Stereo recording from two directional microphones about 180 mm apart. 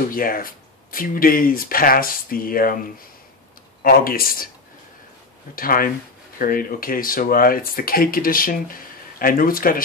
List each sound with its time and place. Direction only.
0.1 s speech: 55° left (ahead or behind)
3.8 s speech: 55° left (ahead or behind)
5.6 s speech: 50° left (ahead or behind)